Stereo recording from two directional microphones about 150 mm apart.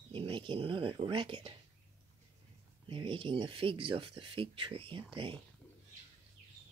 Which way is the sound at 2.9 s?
35° right (ahead or behind).